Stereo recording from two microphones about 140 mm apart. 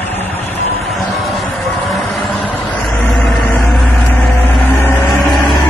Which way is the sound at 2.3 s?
10° left (ahead or behind).